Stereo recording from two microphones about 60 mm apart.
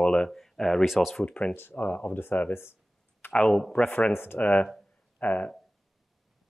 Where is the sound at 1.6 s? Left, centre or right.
Left.